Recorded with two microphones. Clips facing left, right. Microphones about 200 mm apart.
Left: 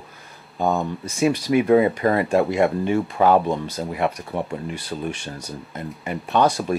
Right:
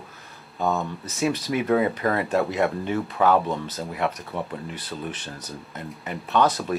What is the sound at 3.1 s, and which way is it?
Speech, 30° left (ahead or behind).